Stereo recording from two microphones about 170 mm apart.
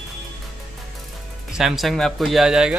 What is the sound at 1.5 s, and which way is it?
Speech, centre (ahead or behind).